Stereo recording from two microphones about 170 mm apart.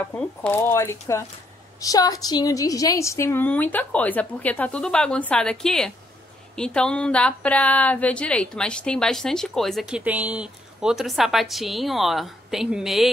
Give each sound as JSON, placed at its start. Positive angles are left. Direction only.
{"t": 0.1, "sound": "a woman's voice", "side_deg": 5}